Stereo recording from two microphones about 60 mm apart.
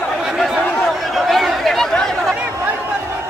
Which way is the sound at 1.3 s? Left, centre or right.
Centre.